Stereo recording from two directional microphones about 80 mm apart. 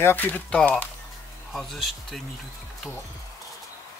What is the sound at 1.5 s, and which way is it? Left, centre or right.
Speech, centre.